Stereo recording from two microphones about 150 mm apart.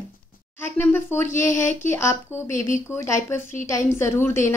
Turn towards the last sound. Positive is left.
turn(degrees=15)  # may be behind; listen again after turning